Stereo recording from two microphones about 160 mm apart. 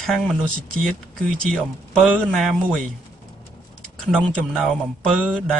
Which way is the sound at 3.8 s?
5° left (ahead or behind).